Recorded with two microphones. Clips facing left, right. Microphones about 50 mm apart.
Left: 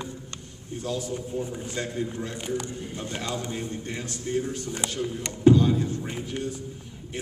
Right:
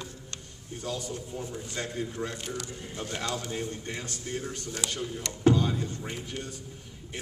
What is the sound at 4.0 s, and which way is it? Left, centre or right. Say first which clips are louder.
A man's voice: left 7 dB; centre.